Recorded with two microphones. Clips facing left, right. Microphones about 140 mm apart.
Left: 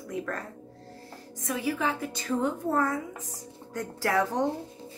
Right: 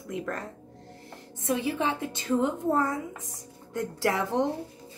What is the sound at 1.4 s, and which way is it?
Speech, 25° right (ahead or behind).